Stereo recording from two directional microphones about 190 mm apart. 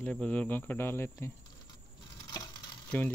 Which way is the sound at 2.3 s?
20° left (ahead or behind).